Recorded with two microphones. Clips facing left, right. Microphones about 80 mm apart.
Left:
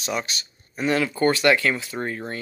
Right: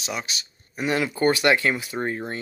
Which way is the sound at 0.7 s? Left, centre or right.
Centre.